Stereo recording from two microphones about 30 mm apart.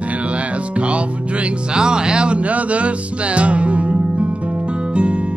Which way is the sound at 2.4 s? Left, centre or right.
Right.